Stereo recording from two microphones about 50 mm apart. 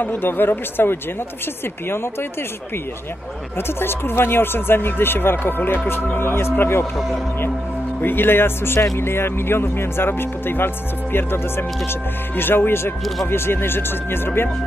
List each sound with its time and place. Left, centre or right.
0.0 s speech: left
3.5 s speech: left
8.0 s speech: left